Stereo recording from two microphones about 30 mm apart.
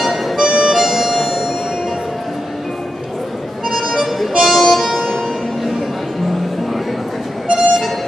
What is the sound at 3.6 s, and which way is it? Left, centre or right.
Music, centre.